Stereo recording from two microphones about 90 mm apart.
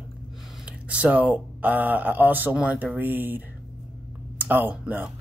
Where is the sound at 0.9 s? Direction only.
15° right (ahead or behind).